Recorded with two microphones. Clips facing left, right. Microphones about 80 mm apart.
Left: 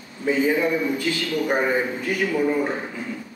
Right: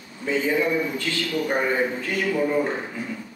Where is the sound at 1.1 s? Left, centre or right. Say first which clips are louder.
Left 2 dB; centre.